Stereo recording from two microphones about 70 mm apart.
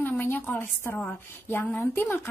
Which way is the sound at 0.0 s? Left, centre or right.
Left.